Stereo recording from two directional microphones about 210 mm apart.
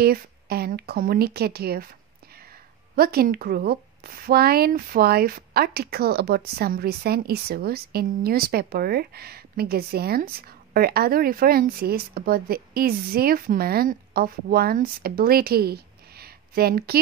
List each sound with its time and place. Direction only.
0.0 s speech: 45° right (ahead or behind)
3.0 s speech: 45° right (ahead or behind)